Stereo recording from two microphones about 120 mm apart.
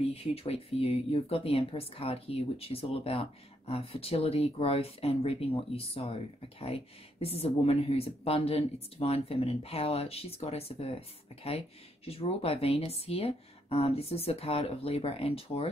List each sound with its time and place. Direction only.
0.1 s speech: 55° left (ahead or behind)